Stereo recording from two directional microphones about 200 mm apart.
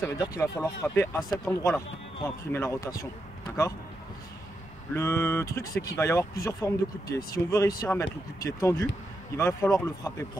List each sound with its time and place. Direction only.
0.0 s speech: 15° left (ahead or behind)
4.9 s speech: 10° left (ahead or behind)